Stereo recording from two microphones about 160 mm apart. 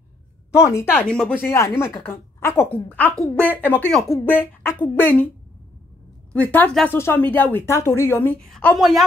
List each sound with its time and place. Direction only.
0.6 s a woman's voice: 15° left (ahead or behind)
0.9 s a woman's voice: 5° left (ahead or behind)
1.4 s a woman's voice: 15° left (ahead or behind)
6.3 s a woman's voice: 10° left (ahead or behind)